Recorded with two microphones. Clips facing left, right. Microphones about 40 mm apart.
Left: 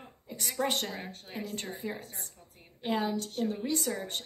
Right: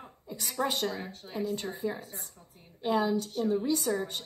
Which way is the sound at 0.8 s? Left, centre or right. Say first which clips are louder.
Right 4 dB; left.